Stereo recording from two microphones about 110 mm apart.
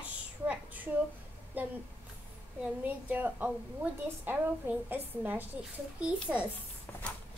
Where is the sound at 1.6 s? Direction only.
15° right (ahead or behind).